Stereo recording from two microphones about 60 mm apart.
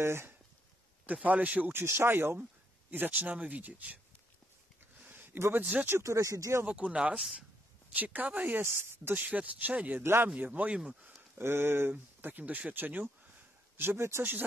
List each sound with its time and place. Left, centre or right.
0.0 s speech: right
1.0 s speech: right
1.7 s speech: right
4.9 s a sound: right
5.5 s speech: right
6.0 s speech: right
6.6 s speech: centre
7.9 s speech: right
8.6 s speech: right
9.2 s speech: right
10.0 s speech: right
10.3 s speech: right
11.3 s speech: right
13.7 s speech: right